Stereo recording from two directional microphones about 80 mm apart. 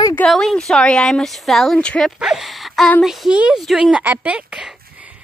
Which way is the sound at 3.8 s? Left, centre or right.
Centre.